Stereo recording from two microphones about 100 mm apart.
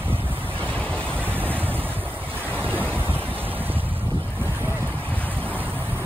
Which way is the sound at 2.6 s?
20° right (ahead or behind).